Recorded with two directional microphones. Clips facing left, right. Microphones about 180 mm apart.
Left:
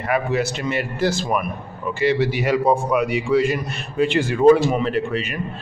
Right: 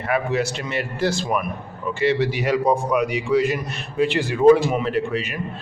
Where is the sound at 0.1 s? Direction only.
5° left (ahead or behind).